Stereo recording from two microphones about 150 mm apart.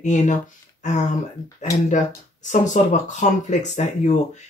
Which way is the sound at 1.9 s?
55° left (ahead or behind).